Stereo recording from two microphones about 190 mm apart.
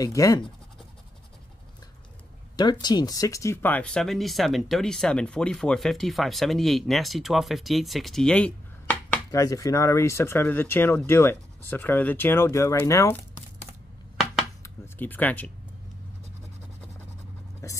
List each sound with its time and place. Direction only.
0.0 s speech: 15° left (ahead or behind)
2.5 s speech: 20° left (ahead or behind)
14.6 s a sound: 10° left (ahead or behind)
17.6 s speech: 15° left (ahead or behind)